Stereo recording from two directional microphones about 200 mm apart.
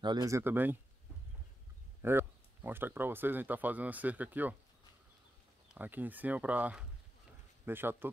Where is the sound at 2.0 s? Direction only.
10° right (ahead or behind).